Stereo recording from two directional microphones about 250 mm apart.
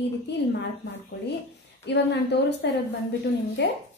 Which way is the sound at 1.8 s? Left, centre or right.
Left.